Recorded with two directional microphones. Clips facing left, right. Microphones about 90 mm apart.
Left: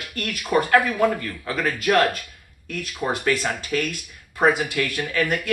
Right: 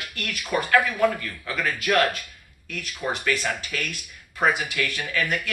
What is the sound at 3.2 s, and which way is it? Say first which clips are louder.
A man's voice: left 3 dB; 30° left (ahead or behind).